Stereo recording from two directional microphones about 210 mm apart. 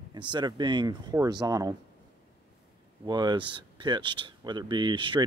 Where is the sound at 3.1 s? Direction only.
20° right (ahead or behind).